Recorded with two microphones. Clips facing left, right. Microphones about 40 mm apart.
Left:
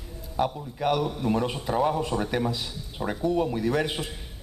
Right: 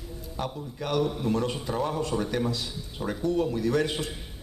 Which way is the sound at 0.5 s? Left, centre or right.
Centre.